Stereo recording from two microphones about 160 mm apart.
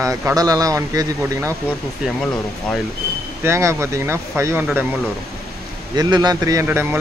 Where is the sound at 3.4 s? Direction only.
15° right (ahead or behind).